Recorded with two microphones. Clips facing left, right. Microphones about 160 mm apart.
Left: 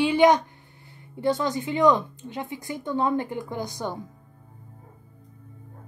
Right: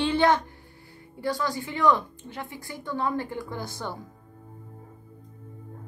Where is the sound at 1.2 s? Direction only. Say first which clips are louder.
Left 4 dB; 20° left (ahead or behind).